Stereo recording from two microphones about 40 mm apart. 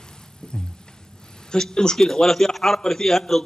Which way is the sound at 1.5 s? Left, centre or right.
Centre.